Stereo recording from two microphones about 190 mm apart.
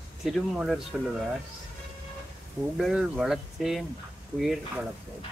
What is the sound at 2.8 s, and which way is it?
Speech, centre (ahead or behind).